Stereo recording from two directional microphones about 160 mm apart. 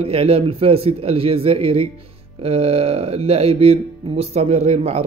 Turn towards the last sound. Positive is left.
turn(degrees=-40)  # may be behind; listen again after turning